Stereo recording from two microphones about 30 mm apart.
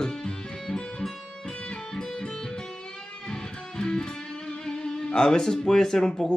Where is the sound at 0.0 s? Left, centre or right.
Left.